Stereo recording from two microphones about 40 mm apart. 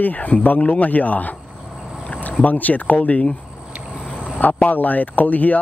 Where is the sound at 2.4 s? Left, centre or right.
Left.